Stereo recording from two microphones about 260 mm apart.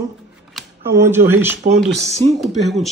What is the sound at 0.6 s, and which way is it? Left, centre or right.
Camera, centre.